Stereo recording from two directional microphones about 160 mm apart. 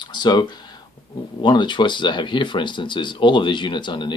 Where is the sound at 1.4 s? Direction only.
30° left (ahead or behind).